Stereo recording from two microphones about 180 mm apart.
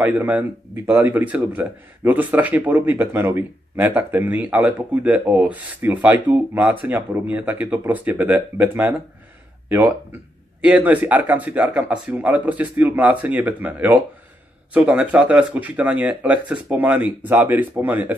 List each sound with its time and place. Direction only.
0.0 s a man's voice: 10° right (ahead or behind)